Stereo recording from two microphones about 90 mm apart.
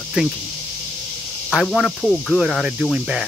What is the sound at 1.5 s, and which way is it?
Cricket, centre (ahead or behind).